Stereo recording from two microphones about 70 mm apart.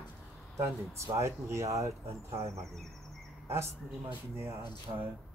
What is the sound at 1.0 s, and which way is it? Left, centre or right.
Speech, right.